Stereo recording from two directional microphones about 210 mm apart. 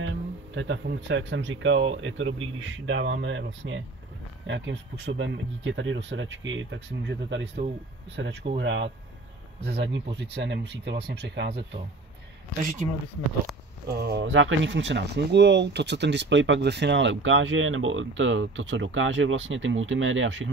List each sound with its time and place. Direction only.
0.0 s speech: 65° right (ahead or behind)
12.8 s speech: 25° right (ahead or behind)
13.8 s speech: 50° right (ahead or behind)